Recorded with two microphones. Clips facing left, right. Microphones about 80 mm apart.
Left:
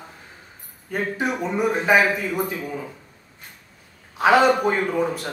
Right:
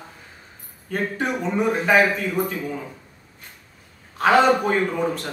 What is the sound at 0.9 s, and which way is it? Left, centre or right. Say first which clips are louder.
A man's voice: even; centre.